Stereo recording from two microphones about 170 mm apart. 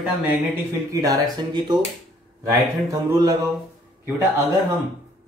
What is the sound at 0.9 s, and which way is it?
Speech, 20° right (ahead or behind).